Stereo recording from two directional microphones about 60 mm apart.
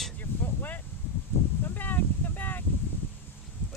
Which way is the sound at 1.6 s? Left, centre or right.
Left.